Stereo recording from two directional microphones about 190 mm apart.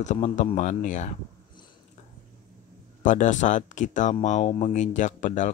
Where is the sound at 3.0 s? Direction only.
40° left (ahead or behind).